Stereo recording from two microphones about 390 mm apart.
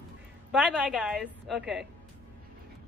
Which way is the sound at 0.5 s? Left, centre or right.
Centre.